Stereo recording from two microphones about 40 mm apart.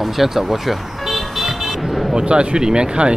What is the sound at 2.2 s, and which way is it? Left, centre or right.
Speech, right.